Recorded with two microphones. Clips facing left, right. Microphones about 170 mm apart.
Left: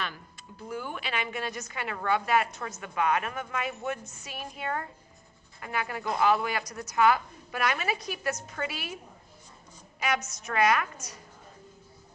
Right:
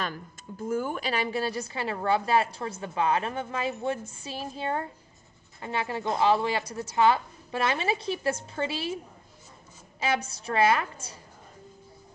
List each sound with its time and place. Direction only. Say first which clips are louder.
0.0 s a woman's voice: right 4 dB; 45° right (ahead or behind); by 11.1 s 30° right (ahead or behind)